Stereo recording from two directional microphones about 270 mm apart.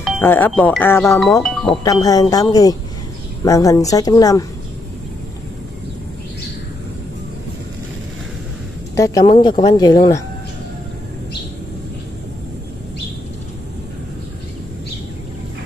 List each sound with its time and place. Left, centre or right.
0.0 s speech: centre
1.8 s speech: centre
8.9 s speech: centre